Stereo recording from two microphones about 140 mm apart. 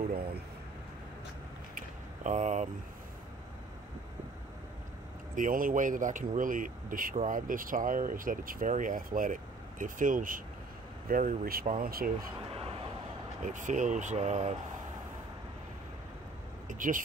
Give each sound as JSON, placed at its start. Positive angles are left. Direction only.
{"t": 1.8, "sound": "a sound", "side_deg": -60}
{"t": 5.3, "sound": "speech", "side_deg": -75}
{"t": 11.1, "sound": "speech", "side_deg": -85}
{"t": 12.4, "sound": "a sound", "side_deg": -45}
{"t": 13.4, "sound": "speech", "side_deg": -65}
{"t": 16.6, "sound": "speech", "side_deg": -70}